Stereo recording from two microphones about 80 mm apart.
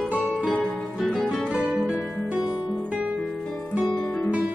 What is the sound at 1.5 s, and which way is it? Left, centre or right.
Music, centre.